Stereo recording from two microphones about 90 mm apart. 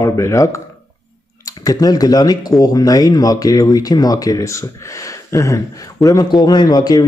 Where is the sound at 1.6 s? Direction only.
45° left (ahead or behind).